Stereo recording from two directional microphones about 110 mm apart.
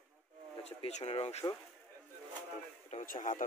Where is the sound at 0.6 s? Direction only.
70° left (ahead or behind).